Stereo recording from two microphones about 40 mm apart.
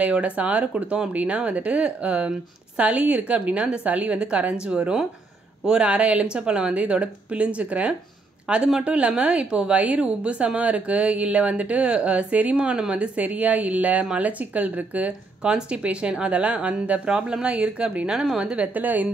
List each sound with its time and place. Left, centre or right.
0.0 s speech: right
18.7 s a woman's voice: right